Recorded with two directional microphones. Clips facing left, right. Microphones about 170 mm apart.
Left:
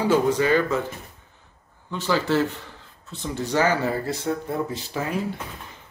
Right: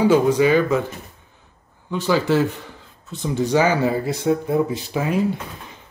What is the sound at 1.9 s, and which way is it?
Speech, 15° right (ahead or behind).